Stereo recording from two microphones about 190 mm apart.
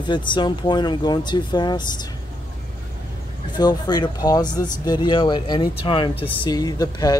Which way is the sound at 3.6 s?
20° left (ahead or behind).